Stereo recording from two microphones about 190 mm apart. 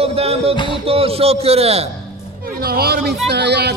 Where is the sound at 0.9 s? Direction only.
30° right (ahead or behind).